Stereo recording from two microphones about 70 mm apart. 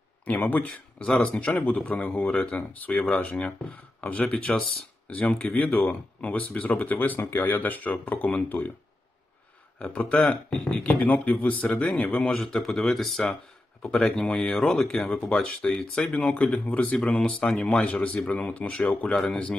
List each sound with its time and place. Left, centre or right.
0.2 s speech: left
0.9 s speech: centre
9.8 s speech: centre
19.1 s speech: centre